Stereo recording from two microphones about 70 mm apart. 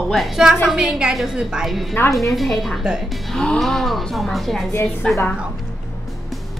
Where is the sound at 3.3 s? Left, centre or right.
Centre.